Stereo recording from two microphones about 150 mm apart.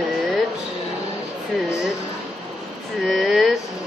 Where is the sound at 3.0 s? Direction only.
Centre (ahead or behind).